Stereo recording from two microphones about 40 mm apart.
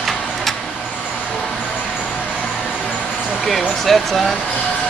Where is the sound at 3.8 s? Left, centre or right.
Centre.